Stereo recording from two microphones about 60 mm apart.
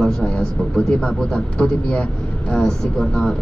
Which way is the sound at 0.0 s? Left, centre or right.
Centre.